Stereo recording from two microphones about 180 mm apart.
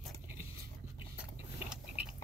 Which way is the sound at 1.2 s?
5° right (ahead or behind).